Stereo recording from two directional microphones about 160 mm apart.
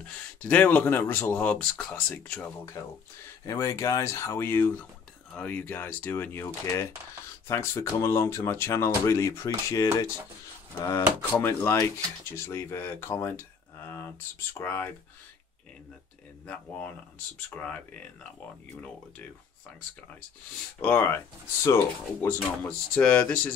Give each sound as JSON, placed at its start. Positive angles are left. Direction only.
{"t": 0.0, "sound": "speech", "side_deg": 10}
{"t": 17.6, "sound": "speech", "side_deg": 5}
{"t": 20.8, "sound": "speech", "side_deg": 10}